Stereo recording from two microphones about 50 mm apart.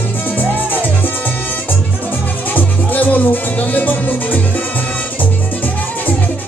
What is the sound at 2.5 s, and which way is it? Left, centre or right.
Music, left.